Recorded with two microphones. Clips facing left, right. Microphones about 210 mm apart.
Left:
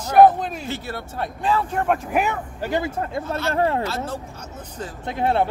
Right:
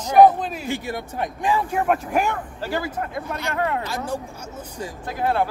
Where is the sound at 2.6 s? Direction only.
20° left (ahead or behind).